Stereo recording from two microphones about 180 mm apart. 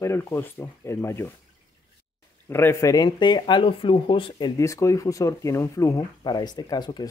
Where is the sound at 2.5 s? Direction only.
15° left (ahead or behind).